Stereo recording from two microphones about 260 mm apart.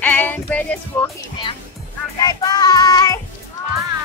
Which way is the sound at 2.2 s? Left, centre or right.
Centre.